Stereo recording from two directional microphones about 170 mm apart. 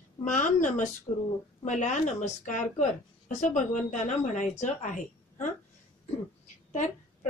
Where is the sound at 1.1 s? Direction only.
25° left (ahead or behind).